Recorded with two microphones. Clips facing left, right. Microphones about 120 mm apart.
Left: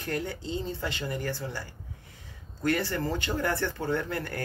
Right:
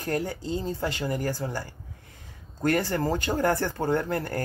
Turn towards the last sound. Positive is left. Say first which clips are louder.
# right 4 dB
turn(degrees=-40)  # may be behind; listen again after turning